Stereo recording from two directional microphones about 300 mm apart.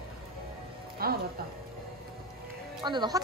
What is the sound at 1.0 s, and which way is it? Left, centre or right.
Music, right.